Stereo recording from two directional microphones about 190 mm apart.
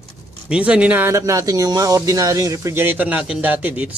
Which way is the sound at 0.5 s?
5° right (ahead or behind).